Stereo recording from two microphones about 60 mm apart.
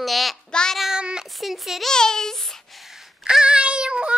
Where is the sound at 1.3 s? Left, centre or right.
Centre.